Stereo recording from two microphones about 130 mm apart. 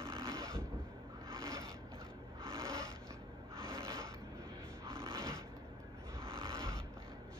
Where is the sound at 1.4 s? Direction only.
20° right (ahead or behind).